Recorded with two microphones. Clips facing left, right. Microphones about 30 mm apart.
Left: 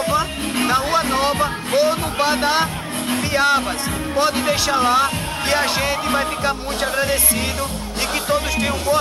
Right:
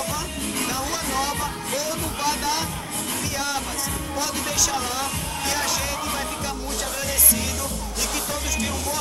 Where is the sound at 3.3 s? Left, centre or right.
Left.